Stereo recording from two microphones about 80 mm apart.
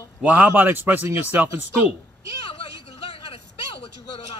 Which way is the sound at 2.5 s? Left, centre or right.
Left.